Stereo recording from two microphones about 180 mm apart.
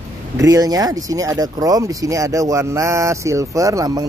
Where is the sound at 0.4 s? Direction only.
20° right (ahead or behind).